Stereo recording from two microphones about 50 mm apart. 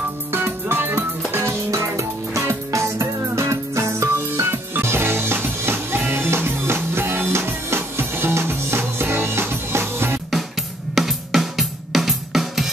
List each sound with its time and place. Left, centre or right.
0.3 s music: right
1.3 s music: right
4.4 s music: right
11.0 s music: centre